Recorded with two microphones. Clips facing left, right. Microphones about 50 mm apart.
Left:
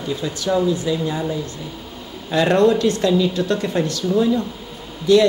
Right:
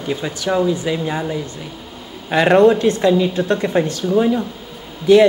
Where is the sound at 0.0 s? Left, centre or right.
Right.